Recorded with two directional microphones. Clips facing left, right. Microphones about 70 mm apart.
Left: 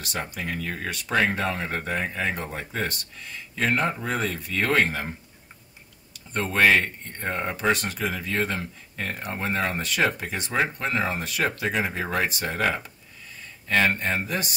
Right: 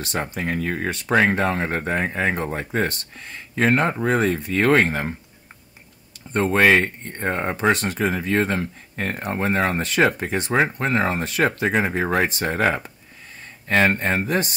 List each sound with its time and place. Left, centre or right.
0.0 s speech: right
6.3 s speech: right
13.7 s speech: right